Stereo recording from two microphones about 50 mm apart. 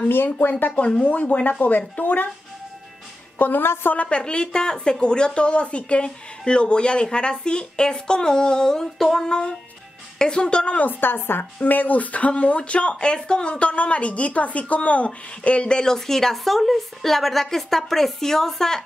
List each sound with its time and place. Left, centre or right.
0.1 s speech: left
0.7 s speech: left
3.3 s a woman's voice: left
3.6 s speech: left
3.9 s a woman's voice: left
4.2 s a woman's voice: centre
9.3 s a woman's voice: centre
10.8 s a woman's voice: left; by 18.8 s centre